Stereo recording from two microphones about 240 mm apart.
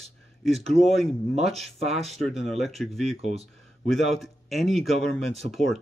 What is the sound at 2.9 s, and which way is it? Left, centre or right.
Speech, right.